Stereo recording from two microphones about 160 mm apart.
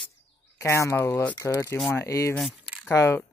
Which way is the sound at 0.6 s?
20° left (ahead or behind).